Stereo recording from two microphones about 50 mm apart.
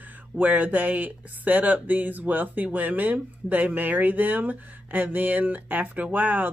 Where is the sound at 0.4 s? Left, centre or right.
Right.